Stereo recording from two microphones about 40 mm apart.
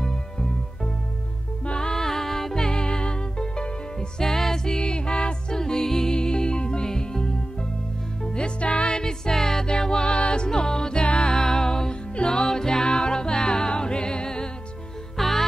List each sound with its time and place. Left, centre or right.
0.0 s music: centre
1.8 s music: centre
4.2 s music: centre
4.7 s music: left
15.1 s music: centre